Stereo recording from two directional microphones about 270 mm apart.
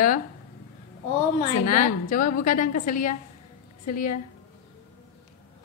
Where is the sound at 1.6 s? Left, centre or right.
Left.